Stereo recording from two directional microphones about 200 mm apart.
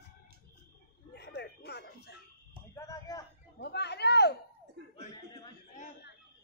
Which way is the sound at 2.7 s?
15° left (ahead or behind).